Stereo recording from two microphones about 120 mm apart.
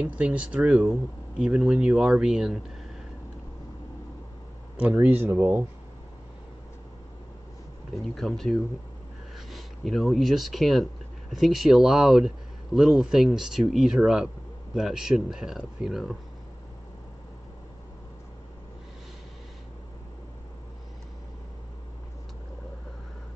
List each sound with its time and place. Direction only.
0.0 s speech: 10° right (ahead or behind)
4.7 s speech: 10° right (ahead or behind)
7.9 s speech: centre (ahead or behind)